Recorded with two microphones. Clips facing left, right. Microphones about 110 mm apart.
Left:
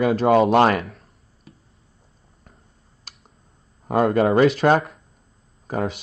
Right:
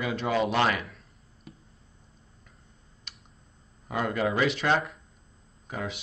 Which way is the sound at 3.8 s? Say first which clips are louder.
Left 10 dB; 45° left (ahead or behind).